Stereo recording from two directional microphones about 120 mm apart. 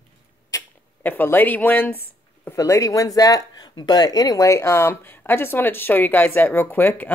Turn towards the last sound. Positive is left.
turn(degrees=15)  # may be behind; listen again after turning